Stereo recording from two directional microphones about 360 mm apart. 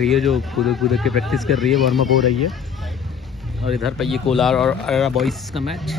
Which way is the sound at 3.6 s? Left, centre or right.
Centre.